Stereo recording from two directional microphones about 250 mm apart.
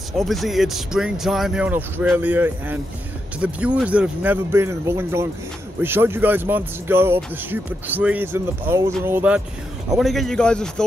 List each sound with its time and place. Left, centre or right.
0.2 s speech: centre